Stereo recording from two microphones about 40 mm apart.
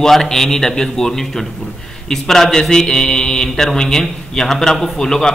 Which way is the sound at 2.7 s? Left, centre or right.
Centre.